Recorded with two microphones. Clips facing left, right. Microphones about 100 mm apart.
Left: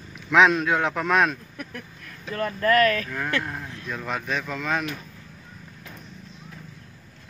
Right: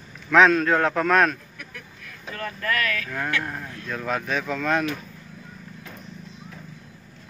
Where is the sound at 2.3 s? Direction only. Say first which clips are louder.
Left 7 dB; 35° left (ahead or behind).